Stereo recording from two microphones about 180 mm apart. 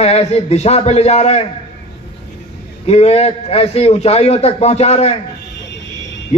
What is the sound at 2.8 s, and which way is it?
A man's voice, 35° left (ahead or behind).